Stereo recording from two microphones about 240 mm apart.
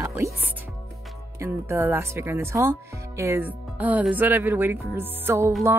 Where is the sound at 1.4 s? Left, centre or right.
Centre.